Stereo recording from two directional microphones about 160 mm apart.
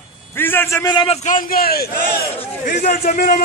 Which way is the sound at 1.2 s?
60° left (ahead or behind).